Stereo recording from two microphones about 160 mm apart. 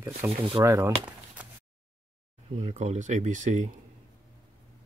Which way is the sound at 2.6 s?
45° right (ahead or behind).